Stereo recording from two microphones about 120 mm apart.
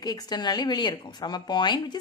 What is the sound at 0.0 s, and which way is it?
Speech, 35° left (ahead or behind).